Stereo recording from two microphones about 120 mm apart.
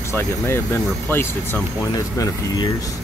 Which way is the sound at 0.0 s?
20° left (ahead or behind).